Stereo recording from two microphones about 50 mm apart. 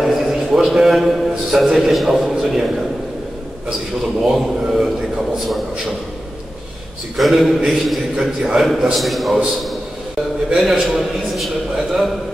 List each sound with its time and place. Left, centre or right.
0.0 s a sound: centre
1.8 s a man's voice: centre
4.2 s a man's voice: centre
7.2 s a man's voice: centre
10.6 s a man's voice: centre